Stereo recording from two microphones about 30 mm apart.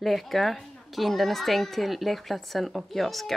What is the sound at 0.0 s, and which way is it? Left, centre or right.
A woman's voice, centre.